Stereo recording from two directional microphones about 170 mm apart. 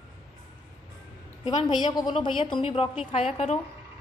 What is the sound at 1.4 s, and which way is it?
A woman's voice, 30° left (ahead or behind).